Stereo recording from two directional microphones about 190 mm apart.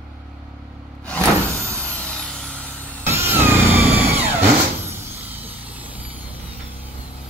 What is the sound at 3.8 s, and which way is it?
Vehicle, 30° right (ahead or behind).